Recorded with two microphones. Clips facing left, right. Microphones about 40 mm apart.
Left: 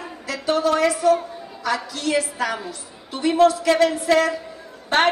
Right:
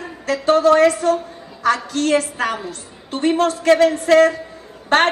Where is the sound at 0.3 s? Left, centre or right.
Right.